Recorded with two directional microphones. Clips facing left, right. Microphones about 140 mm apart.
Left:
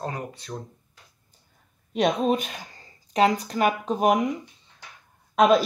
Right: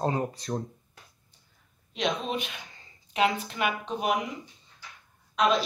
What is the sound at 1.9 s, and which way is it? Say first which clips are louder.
Speech: left 7 dB; 45° left (ahead or behind).